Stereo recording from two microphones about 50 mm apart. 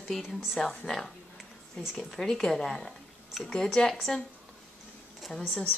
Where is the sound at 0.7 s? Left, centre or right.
Centre.